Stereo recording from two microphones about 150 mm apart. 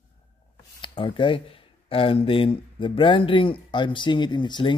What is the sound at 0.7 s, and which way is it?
Speech, 35° left (ahead or behind).